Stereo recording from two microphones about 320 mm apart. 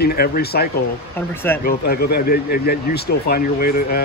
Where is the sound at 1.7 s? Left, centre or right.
Left.